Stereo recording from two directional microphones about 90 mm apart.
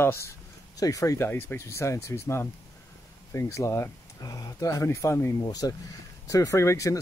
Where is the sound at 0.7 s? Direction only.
40° left (ahead or behind).